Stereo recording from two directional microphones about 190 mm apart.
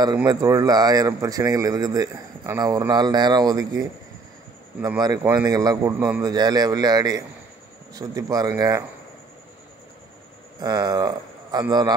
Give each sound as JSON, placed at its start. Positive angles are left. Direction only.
{"t": 0.0, "sound": "a man's voice", "side_deg": -20}
{"t": 4.8, "sound": "a man's voice", "side_deg": -20}
{"t": 5.9, "sound": "a man's voice", "side_deg": -10}
{"t": 6.2, "sound": "a man's voice", "side_deg": -20}
{"t": 10.6, "sound": "speech", "side_deg": -20}